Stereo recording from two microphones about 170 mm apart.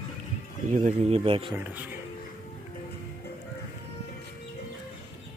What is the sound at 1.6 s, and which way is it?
Speech, 10° right (ahead or behind).